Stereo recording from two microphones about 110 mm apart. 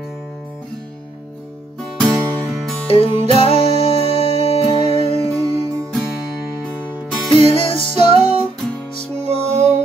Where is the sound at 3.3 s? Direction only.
60° left (ahead or behind).